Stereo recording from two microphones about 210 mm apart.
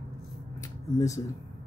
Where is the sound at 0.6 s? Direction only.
15° left (ahead or behind).